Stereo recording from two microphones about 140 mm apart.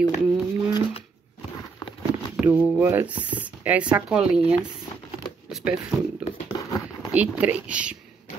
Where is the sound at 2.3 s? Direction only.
10° right (ahead or behind).